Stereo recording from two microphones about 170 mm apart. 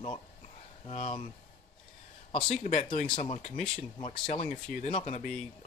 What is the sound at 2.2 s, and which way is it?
Speech, 35° left (ahead or behind).